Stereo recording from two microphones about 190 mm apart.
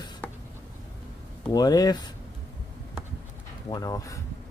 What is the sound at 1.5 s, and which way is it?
Speech, 20° left (ahead or behind).